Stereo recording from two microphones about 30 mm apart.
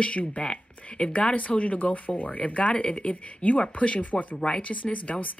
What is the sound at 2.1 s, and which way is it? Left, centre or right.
Speech, left.